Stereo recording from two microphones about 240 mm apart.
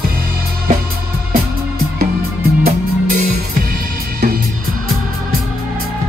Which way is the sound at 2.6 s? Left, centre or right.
Right.